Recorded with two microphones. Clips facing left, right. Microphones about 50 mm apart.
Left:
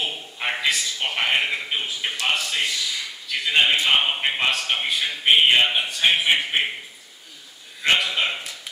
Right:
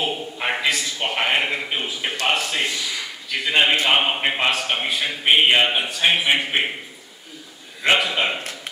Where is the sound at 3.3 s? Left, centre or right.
Centre.